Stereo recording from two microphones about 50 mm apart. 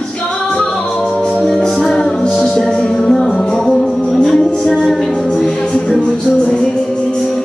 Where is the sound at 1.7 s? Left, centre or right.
Centre.